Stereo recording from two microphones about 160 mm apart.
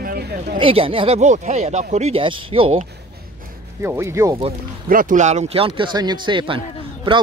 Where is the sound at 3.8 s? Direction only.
15° right (ahead or behind).